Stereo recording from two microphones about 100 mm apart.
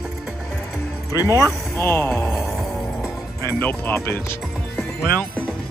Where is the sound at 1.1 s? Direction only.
35° left (ahead or behind).